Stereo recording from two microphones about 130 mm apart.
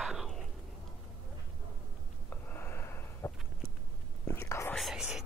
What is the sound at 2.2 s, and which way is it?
Sniff, 15° left (ahead or behind).